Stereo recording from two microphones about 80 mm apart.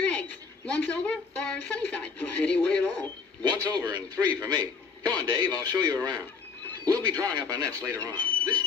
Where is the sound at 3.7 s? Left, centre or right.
Right.